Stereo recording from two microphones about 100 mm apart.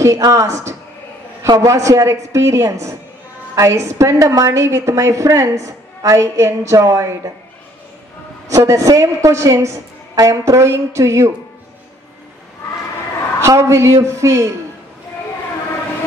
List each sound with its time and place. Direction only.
0.0 s a woman's voice: 30° right (ahead or behind)
8.5 s a woman's voice: 30° right (ahead or behind)
13.4 s a woman's voice: 30° right (ahead or behind)